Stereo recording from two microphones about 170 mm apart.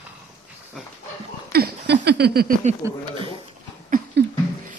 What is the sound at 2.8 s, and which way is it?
Speech, 15° right (ahead or behind).